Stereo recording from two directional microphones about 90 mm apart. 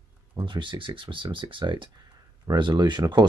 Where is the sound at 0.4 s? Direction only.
60° right (ahead or behind).